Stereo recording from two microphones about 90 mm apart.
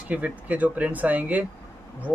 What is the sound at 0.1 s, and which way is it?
Speech, 15° right (ahead or behind).